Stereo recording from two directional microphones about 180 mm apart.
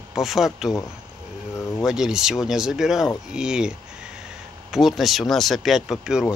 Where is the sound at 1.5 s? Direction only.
15° left (ahead or behind).